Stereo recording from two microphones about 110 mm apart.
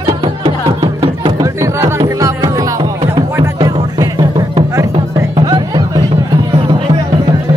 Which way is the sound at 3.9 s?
40° right (ahead or behind).